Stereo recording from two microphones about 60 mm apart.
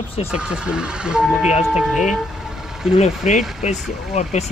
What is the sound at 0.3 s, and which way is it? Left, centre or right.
Speech, centre.